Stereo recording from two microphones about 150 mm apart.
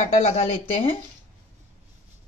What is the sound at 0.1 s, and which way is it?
Speech, 45° left (ahead or behind).